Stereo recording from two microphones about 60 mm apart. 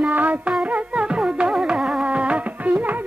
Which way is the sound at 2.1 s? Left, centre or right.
Centre.